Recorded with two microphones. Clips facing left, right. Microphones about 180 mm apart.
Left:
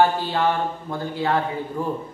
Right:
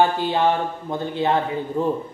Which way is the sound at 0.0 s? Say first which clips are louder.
Right 1 dB; 20° right (ahead or behind).